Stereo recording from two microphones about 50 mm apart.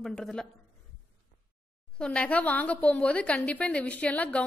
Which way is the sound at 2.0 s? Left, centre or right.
Left.